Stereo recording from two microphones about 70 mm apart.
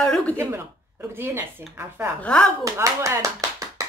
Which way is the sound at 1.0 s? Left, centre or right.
Right.